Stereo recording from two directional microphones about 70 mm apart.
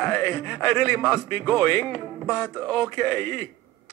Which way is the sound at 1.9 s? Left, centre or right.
Centre.